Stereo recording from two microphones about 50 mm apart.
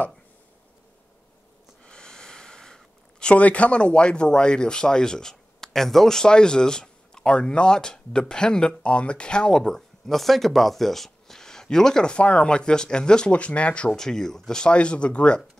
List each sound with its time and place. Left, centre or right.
1.9 s speech: centre
13.8 s speech: centre